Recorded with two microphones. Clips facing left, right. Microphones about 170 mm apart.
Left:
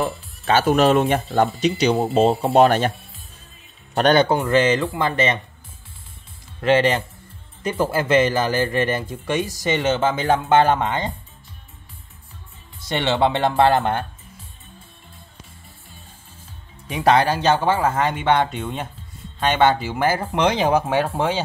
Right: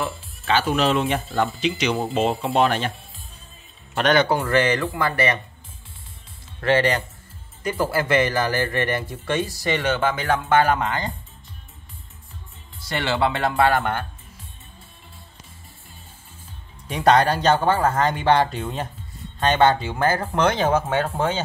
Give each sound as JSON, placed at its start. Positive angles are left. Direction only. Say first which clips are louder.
{"t": 0.5, "sound": "speech", "louder": "left 4 dB", "side_deg": 45}
{"t": 3.9, "sound": "speech", "louder": "left 3 dB", "side_deg": 35}
{"t": 6.6, "sound": "speech", "louder": "left 2 dB", "side_deg": 20}
{"t": 12.8, "sound": "speech", "louder": "left 3 dB", "side_deg": 25}
{"t": 16.9, "sound": "speech", "louder": "even", "side_deg": 10}